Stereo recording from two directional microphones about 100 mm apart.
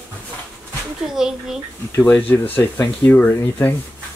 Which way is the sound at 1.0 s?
5° right (ahead or behind).